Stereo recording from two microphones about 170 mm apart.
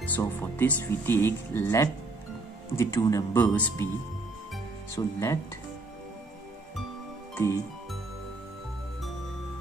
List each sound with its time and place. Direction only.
0.0 s speech: 10° left (ahead or behind)
4.9 s speech: 15° left (ahead or behind)
7.3 s music: 15° left (ahead or behind)